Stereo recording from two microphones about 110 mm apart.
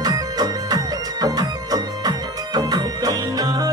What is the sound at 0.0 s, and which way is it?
Music, 35° right (ahead or behind).